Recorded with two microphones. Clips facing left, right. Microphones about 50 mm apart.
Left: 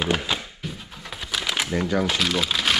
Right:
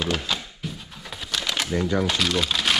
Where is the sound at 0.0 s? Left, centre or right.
Centre.